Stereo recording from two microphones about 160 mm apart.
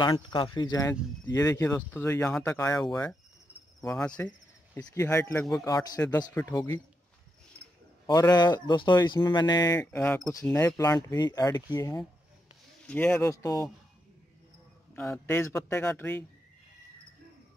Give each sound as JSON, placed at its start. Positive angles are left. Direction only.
{"t": 0.0, "sound": "speech", "side_deg": 30}
{"t": 3.8, "sound": "insect", "side_deg": 5}
{"t": 4.7, "sound": "speech", "side_deg": 15}
{"t": 8.1, "sound": "speech", "side_deg": 25}
{"t": 9.8, "sound": "speech", "side_deg": 10}
{"t": 10.8, "sound": "speech", "side_deg": 20}
{"t": 12.8, "sound": "speech", "side_deg": 10}
{"t": 15.0, "sound": "speech", "side_deg": 15}